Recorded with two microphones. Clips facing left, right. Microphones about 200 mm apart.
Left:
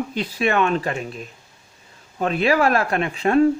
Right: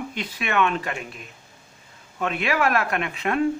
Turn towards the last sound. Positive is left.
turn(degrees=35)  # may be behind; listen again after turning